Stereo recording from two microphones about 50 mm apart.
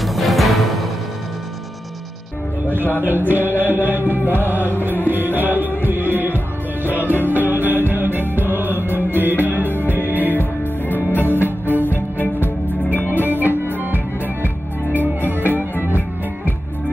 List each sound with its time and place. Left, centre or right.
0.0 s music: centre
2.7 s speech: left
3.0 s music: right
10.3 s music: left
11.3 s music: right
11.8 s music: left
12.9 s music: right